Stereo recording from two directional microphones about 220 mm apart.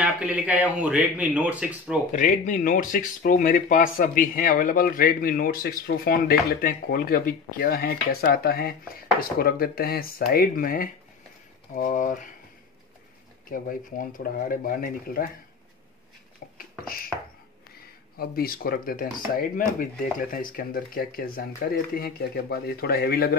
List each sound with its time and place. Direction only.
0.0 s a man's voice: 5° right (ahead or behind)
2.1 s speech: 35° left (ahead or behind)
13.5 s speech: 40° left (ahead or behind)
16.5 s a sound: 40° left (ahead or behind)
18.1 s speech: 45° left (ahead or behind)